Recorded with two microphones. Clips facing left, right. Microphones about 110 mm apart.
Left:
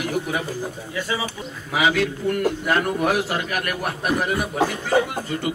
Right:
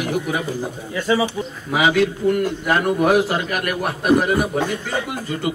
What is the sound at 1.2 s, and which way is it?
A man's voice, 15° right (ahead or behind).